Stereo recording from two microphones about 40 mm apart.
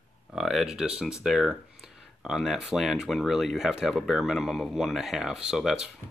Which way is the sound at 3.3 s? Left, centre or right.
Centre.